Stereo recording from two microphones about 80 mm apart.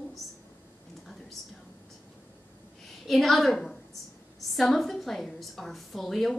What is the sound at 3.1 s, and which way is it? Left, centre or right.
A woman's voice, centre.